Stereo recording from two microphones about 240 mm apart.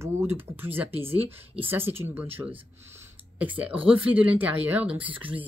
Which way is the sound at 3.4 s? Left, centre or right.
Centre.